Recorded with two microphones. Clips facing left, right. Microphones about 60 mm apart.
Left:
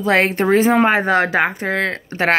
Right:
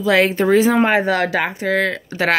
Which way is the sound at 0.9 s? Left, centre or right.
Left.